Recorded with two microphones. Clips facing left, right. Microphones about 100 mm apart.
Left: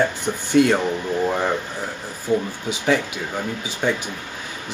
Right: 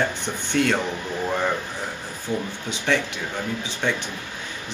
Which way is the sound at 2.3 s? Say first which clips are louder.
Left 6 dB; 20° left (ahead or behind).